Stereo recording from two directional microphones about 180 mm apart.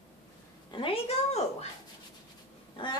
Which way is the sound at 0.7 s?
30° left (ahead or behind).